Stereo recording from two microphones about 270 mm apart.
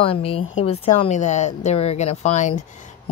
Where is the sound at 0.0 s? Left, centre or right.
Left.